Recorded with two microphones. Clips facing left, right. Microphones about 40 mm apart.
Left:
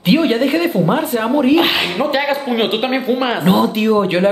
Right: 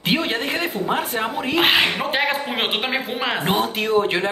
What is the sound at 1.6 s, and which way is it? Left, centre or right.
A woman's voice, centre.